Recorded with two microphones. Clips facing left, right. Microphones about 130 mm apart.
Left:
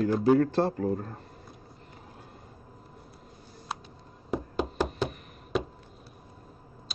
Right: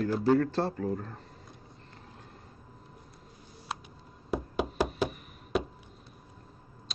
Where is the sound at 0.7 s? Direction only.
40° left (ahead or behind).